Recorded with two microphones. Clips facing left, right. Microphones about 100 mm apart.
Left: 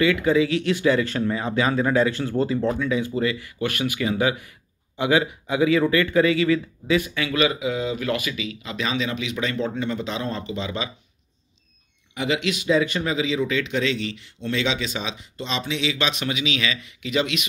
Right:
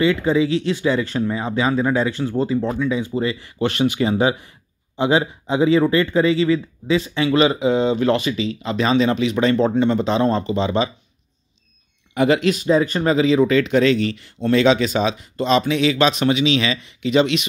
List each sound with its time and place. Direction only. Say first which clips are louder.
0.0 s speech: right 2 dB; 25° right (ahead or behind)
12.1 s speech: right 8 dB; 50° right (ahead or behind); by 17.5 s 30° right (ahead or behind)